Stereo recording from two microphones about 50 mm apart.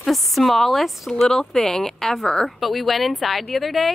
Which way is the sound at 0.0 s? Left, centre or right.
Centre.